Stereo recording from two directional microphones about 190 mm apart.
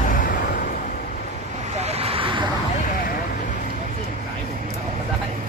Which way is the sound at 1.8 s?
30° right (ahead or behind).